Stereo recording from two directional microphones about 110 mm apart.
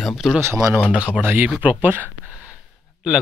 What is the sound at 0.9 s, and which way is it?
Speech, 10° right (ahead or behind).